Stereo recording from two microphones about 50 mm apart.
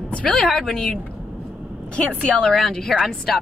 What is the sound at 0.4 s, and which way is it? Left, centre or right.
Speech, centre.